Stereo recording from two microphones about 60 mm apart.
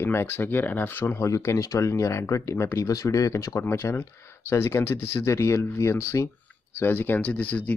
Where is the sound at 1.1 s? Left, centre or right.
Left.